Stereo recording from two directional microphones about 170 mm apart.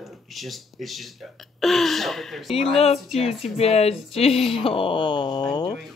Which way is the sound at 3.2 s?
35° left (ahead or behind).